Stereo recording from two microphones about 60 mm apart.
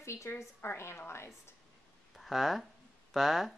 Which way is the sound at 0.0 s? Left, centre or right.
Left.